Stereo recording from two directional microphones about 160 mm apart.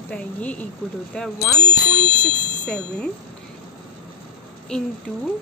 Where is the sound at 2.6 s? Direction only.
5° left (ahead or behind).